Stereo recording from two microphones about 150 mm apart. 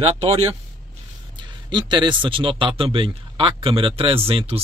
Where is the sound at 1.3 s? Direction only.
30° right (ahead or behind).